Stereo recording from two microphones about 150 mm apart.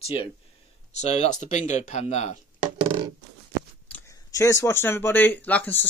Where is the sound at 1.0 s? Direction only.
50° left (ahead or behind).